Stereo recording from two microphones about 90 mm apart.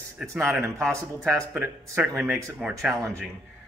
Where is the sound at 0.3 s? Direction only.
30° right (ahead or behind).